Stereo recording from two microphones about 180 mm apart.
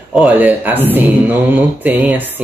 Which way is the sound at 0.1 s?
10° right (ahead or behind).